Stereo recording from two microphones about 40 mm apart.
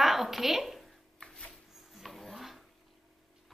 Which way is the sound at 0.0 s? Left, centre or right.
Centre.